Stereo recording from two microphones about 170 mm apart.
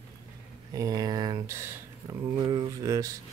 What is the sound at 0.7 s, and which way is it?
Speech, 20° right (ahead or behind).